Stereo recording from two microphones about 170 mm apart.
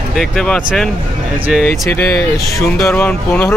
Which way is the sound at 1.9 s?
15° left (ahead or behind).